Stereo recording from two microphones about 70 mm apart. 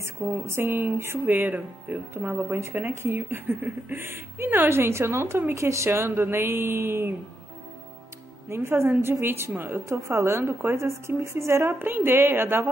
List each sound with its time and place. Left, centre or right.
0.5 s speech: right
8.5 s speech: right